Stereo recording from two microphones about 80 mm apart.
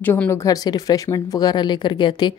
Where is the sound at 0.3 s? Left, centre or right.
Left.